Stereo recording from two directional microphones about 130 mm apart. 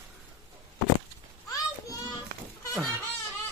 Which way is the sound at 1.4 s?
30° left (ahead or behind).